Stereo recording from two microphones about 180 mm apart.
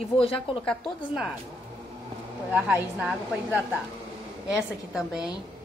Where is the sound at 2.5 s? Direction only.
10° right (ahead or behind).